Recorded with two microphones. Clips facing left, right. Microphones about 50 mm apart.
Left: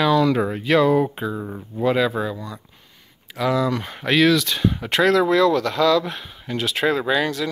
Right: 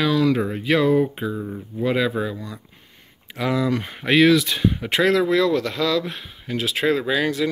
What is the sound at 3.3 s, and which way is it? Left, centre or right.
Speech, centre.